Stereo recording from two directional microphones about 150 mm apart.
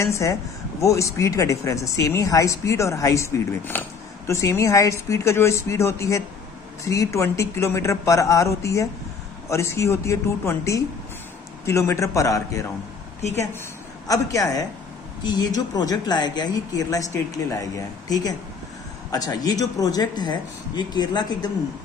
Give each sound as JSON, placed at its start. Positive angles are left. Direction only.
{"t": 0.0, "sound": "speech", "side_deg": 20}
{"t": 14.0, "sound": "speech", "side_deg": 25}